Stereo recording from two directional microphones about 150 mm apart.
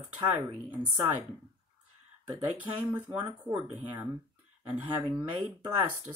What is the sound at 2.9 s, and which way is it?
Speech, 10° right (ahead or behind).